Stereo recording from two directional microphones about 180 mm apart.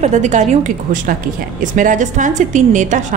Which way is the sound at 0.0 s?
40° right (ahead or behind).